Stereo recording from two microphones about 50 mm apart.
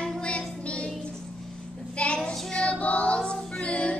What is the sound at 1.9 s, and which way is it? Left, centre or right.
Child singing, left.